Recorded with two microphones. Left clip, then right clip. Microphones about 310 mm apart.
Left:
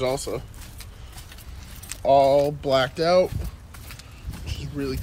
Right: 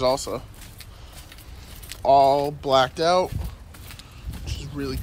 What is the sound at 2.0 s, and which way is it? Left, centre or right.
Speech, centre.